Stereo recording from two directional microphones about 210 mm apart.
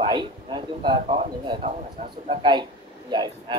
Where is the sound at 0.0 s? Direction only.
20° right (ahead or behind).